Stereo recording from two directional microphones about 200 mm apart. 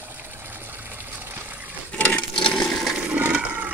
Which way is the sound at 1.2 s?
10° right (ahead or behind).